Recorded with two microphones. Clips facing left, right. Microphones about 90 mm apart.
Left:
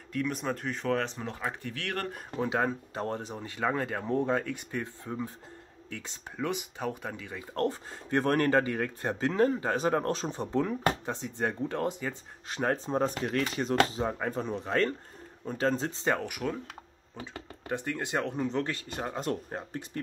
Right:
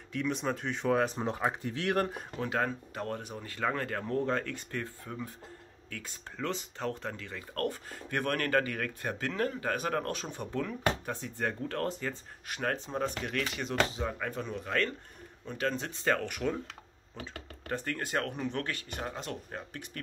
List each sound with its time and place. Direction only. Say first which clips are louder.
0.1 s speech: left 1 dB; centre (ahead or behind)
1.1 s speech: right 4 dB; 20° right (ahead or behind)
2.4 s speech: left 3 dB; 15° left (ahead or behind)
2.9 s speech: left 3 dB; 30° left (ahead or behind)
12.4 s speech: left 4 dB; 30° left (ahead or behind)
16.3 s speech: right 1 dB; 5° left (ahead or behind); by 20.0 s 30° left (ahead or behind)